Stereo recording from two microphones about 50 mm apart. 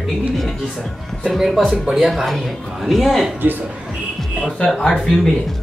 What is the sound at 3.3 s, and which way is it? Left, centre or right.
Speech, right.